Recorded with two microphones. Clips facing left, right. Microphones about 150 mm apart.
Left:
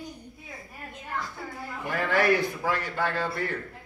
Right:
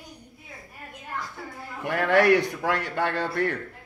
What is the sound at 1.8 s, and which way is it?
A man's voice, 65° right (ahead or behind).